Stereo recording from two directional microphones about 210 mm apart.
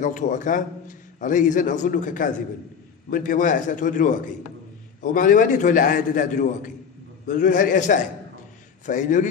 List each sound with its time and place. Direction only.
0.0 s a man's voice: 35° left (ahead or behind)